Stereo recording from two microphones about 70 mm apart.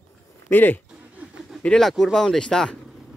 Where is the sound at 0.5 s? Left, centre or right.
Left.